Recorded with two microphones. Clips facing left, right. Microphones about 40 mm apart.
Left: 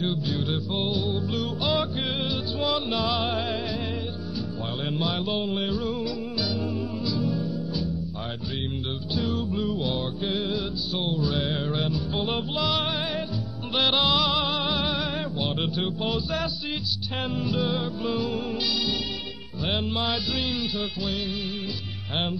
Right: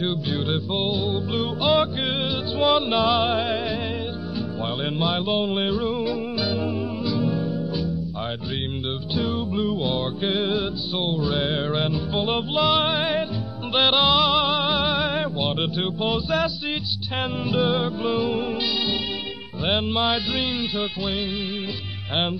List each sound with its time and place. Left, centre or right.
0.3 s music: right
4.8 s music: right
9.3 s music: right
9.7 s music: centre
9.9 s music: right
11.0 s music: right
13.7 s yodeling: right
15.6 s music: right
17.4 s music: right
18.1 s music: right
19.6 s music: right